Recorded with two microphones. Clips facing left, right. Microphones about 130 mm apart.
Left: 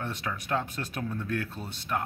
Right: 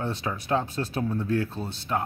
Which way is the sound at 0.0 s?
30° right (ahead or behind).